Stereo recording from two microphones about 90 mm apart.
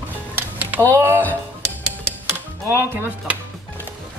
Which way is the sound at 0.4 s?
20° right (ahead or behind).